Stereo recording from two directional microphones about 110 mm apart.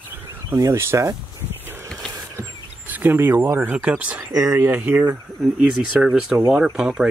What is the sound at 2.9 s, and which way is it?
Speech, 15° right (ahead or behind).